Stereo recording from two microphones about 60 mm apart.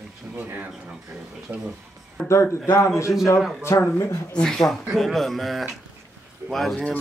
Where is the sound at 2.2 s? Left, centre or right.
Left.